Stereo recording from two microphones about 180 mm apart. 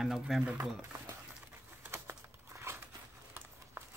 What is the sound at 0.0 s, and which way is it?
Speech, centre (ahead or behind).